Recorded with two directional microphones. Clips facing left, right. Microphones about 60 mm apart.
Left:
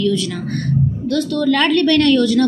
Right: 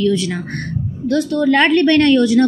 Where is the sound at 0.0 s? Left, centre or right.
Right.